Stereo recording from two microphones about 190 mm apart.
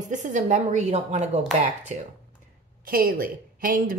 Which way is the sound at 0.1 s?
40° right (ahead or behind).